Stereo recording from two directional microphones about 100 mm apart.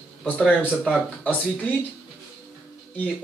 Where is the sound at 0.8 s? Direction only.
15° left (ahead or behind).